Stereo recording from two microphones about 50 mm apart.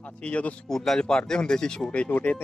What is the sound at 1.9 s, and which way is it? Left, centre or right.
Speech, left.